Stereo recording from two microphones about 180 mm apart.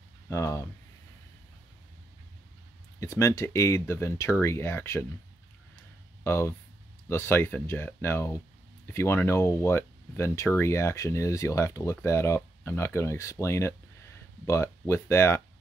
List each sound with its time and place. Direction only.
0.3 s speech: 15° left (ahead or behind)
3.0 s speech: 15° left (ahead or behind)
6.2 s speech: 15° left (ahead or behind)